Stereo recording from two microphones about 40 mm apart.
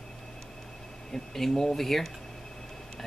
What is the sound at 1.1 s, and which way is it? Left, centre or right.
Speech, centre.